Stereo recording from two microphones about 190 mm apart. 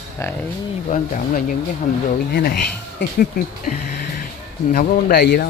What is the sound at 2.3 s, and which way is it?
Speech, 55° left (ahead or behind).